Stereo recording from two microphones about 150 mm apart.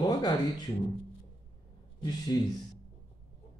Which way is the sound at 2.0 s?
25° left (ahead or behind).